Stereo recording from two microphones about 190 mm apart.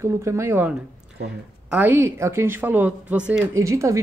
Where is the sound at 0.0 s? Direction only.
15° right (ahead or behind).